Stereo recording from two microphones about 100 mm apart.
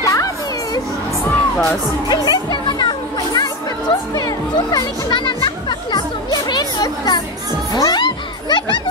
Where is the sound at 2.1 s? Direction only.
45° left (ahead or behind).